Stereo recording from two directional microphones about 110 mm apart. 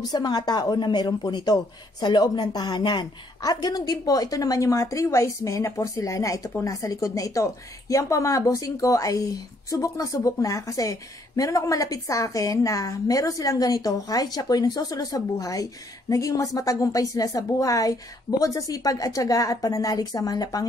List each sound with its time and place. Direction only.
0.0 s a woman's voice: 40° left (ahead or behind)